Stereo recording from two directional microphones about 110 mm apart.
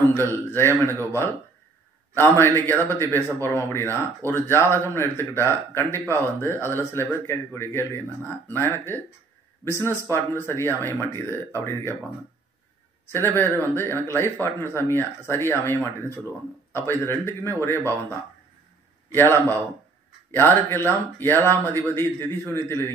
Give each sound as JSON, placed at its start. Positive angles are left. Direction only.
{"t": 0.0, "sound": "speech", "side_deg": 20}
{"t": 2.1, "sound": "speech", "side_deg": 20}
{"t": 13.1, "sound": "speech", "side_deg": 20}
{"t": 19.1, "sound": "a man's voice", "side_deg": 20}